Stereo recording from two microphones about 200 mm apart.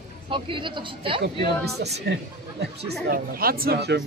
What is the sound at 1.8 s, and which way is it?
Speech, 60° right (ahead or behind).